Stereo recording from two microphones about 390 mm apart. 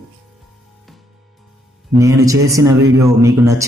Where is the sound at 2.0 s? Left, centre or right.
Centre.